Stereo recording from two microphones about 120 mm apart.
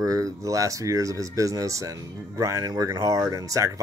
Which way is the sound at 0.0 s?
30° right (ahead or behind).